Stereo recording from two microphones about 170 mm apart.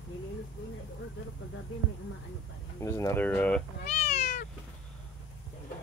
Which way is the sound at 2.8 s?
15° left (ahead or behind).